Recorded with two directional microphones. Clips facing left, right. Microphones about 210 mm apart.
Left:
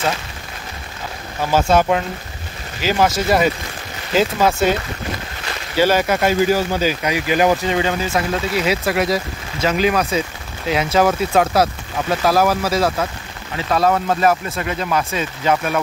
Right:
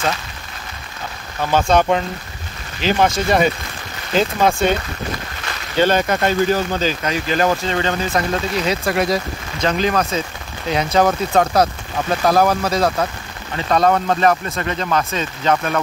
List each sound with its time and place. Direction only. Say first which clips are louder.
1.5 s speech: even; 5° left (ahead or behind)
5.8 s speech: even; 10° left (ahead or behind)